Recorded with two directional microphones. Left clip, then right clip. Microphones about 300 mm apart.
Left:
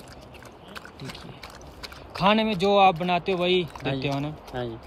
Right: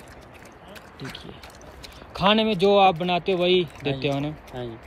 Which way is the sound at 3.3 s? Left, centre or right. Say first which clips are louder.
Right 3 dB; centre.